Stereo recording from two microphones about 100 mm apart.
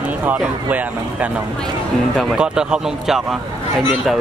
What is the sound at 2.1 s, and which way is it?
Speech, 5° right (ahead or behind).